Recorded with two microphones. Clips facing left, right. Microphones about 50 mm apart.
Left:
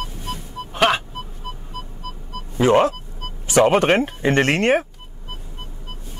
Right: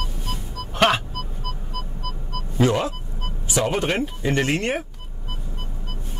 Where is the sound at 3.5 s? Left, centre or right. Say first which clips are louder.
Left 8 dB; left.